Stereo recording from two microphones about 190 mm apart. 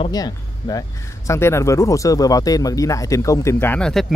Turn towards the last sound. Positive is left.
turn(degrees=5)  # may be behind; listen again after turning